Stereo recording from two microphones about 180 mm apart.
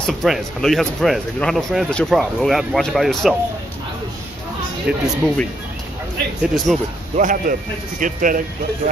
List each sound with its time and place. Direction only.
0.0 s speech: centre (ahead or behind)
4.8 s speech: centre (ahead or behind)
6.7 s speech: centre (ahead or behind)
7.2 s speech: 50° right (ahead or behind)